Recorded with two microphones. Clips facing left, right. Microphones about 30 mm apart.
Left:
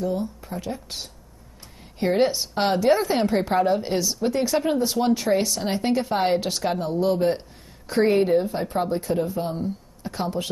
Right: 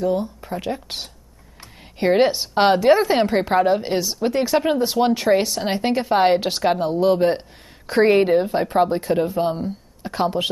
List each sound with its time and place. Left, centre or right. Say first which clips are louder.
0.0 s speech: right 5 dB; right